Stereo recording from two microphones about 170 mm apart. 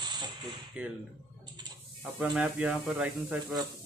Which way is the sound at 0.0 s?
25° right (ahead or behind).